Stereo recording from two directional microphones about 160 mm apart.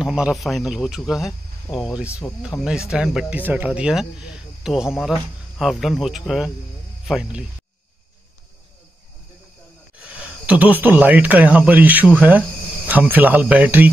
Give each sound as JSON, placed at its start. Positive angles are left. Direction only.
{"t": 0.0, "sound": "speech", "side_deg": -5}
{"t": 9.9, "sound": "speech", "side_deg": -10}